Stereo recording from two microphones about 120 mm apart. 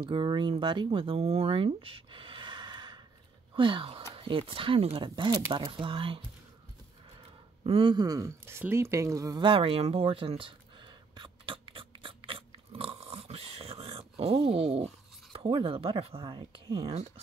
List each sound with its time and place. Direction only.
0.0 s speech: 45° right (ahead or behind)
7.6 s a woman's voice: 45° right (ahead or behind); by 9.4 s 30° right (ahead or behind)
9.4 s a sound: 45° right (ahead or behind)
15.3 s speech: 45° right (ahead or behind)
16.2 s speech: 40° right (ahead or behind)
16.8 s speech: 60° right (ahead or behind)